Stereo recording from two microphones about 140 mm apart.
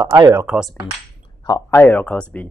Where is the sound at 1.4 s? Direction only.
25° left (ahead or behind); by 2.2 s 10° left (ahead or behind).